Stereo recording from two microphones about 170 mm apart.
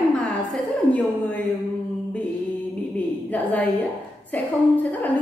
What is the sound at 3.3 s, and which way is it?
Speech, 10° left (ahead or behind).